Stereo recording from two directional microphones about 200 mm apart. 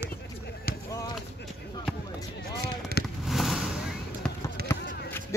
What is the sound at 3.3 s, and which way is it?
Fireworks, centre (ahead or behind).